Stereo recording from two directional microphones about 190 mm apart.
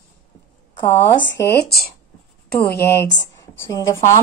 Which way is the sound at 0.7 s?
20° left (ahead or behind).